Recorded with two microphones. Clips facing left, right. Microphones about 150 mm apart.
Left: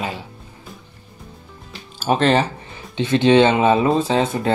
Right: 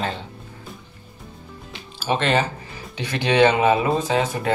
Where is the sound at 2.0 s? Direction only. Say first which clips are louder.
Left 4 dB; 40° left (ahead or behind).